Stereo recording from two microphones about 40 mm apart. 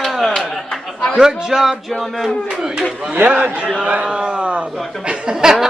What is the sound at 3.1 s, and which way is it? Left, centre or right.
Speech, right.